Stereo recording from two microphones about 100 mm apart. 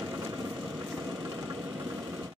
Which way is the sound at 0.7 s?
25° right (ahead or behind).